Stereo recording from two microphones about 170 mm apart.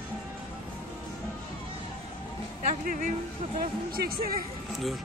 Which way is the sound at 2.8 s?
55° right (ahead or behind).